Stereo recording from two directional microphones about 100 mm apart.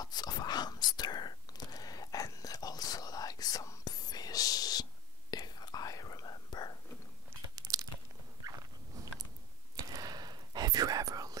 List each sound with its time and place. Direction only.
0.0 s whispering: 40° left (ahead or behind)
7.5 s crunch: 40° right (ahead or behind)
9.8 s whispering: 40° right (ahead or behind)